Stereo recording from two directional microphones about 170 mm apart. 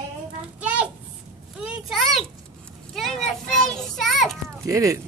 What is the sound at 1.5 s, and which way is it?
Children playing, 5° right (ahead or behind).